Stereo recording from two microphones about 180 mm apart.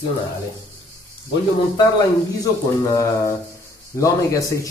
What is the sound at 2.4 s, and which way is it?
Speech, 15° left (ahead or behind).